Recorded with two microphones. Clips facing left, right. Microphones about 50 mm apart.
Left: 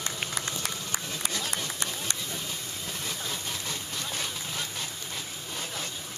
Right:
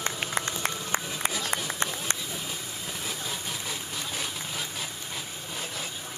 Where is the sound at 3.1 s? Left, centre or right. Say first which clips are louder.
Right 1 dB; centre.